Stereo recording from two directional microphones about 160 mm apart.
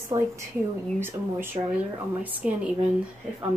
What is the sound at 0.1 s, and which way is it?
A woman's voice, 20° right (ahead or behind).